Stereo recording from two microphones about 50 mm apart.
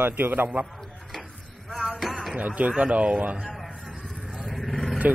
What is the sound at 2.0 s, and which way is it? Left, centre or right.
Music, centre.